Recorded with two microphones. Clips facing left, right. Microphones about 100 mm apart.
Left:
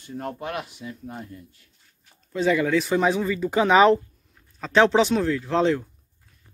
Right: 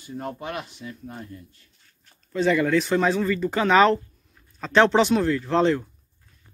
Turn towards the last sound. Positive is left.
turn(degrees=0)  # may be behind; listen again after turning